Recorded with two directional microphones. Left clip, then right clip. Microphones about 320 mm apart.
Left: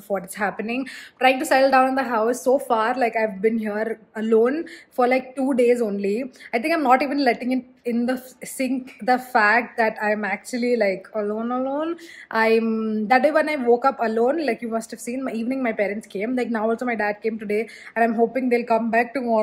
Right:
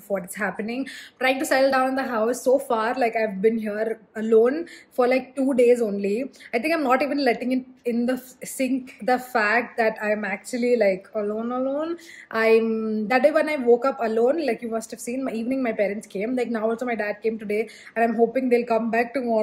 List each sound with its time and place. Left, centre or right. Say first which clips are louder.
0.1 s a woman's voice: left 2 dB; centre